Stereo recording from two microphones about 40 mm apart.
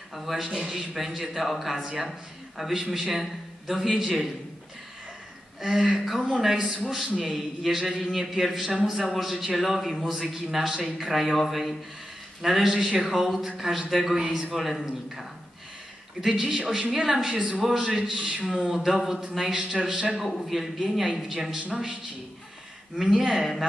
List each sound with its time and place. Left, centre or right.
0.1 s a man's voice: centre
5.6 s a man's voice: centre
18.8 s a man's voice: centre
19.7 s a man's voice: centre
20.2 s a man's voice: centre
22.9 s a man's voice: centre